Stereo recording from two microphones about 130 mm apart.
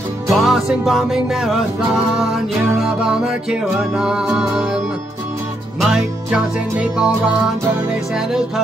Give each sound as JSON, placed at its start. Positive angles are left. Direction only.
{"t": 0.3, "sound": "music", "side_deg": 0}
{"t": 5.8, "sound": "music", "side_deg": -5}